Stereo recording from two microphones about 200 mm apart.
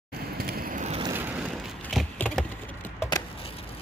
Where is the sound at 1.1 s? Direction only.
5° right (ahead or behind).